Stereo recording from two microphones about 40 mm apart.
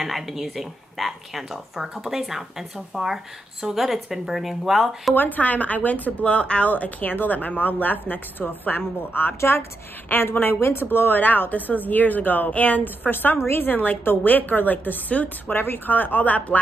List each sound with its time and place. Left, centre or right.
0.0 s speech: centre
5.1 s speech: left
6.2 s speech: left
6.7 s speech: left
9.4 s a woman's voice: left
10.0 s speech: left
10.6 s speech: left